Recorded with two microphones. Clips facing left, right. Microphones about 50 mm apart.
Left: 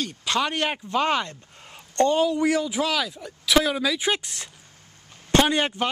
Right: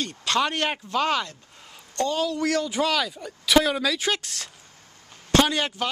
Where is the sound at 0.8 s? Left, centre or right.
Left; by 4.0 s centre.